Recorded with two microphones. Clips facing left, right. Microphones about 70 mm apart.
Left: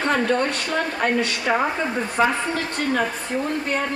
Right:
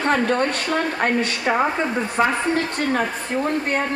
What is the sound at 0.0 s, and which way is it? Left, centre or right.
A woman's voice, right.